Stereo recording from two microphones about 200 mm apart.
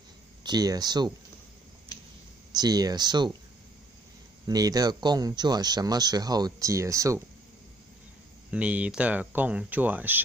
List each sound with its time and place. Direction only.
0.4 s speech: 20° right (ahead or behind)
2.5 s speech: 20° right (ahead or behind)
4.5 s speech: 20° right (ahead or behind)
8.5 s speech: 5° right (ahead or behind)